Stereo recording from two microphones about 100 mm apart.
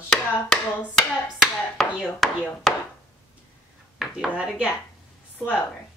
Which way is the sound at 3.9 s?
10° right (ahead or behind).